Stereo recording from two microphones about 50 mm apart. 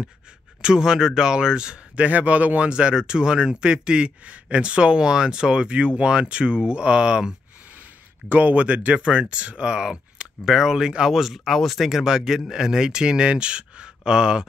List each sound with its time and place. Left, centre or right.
0.6 s speech: centre
2.0 s speech: right
8.3 s speech: right
8.5 s speech: right; by 11.9 s centre
11.9 s speech: centre